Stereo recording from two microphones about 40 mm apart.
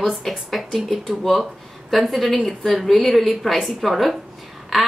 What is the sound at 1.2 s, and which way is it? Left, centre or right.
A woman's voice, centre.